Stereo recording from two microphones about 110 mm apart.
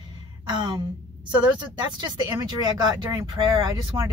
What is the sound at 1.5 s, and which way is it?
Speech, 40° right (ahead or behind).